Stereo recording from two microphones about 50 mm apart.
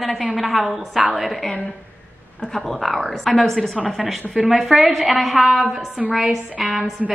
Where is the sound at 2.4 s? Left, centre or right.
Centre.